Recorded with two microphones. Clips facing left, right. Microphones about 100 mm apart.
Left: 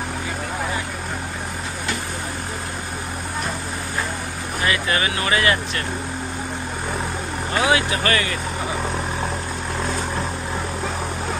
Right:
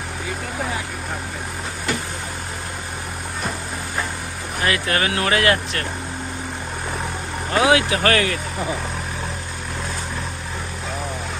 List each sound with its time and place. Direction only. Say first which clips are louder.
4.6 s speech: right 1 dB; 65° right (ahead or behind)
7.6 s speech: right 3 dB; 85° right